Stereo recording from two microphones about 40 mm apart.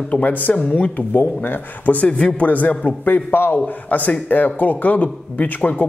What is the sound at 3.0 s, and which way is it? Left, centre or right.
A man's voice, left.